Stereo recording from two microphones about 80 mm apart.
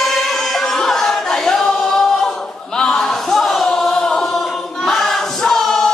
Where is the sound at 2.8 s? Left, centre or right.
Centre.